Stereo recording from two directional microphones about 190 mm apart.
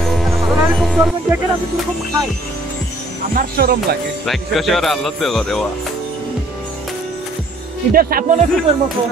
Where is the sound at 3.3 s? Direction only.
50° right (ahead or behind).